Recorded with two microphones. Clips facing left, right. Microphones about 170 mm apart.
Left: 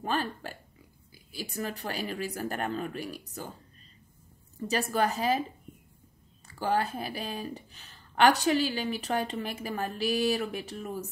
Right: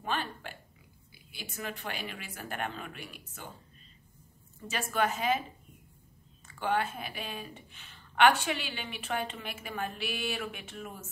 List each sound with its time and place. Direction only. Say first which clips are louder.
0.0 s speech: left 4 dB; 40° left (ahead or behind)
4.6 s speech: left 3 dB; 35° left (ahead or behind)
6.4 s speech: left 2 dB; 35° left (ahead or behind)